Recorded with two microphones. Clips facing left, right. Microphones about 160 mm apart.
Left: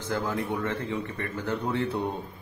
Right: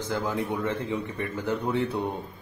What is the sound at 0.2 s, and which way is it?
A man's voice, 20° right (ahead or behind).